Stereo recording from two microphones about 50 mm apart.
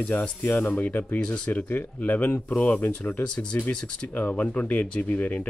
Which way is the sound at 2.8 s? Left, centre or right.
Left.